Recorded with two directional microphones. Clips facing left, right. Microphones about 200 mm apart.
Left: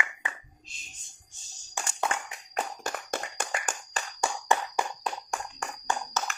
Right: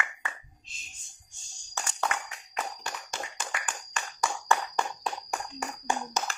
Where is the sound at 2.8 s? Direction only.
55° left (ahead or behind).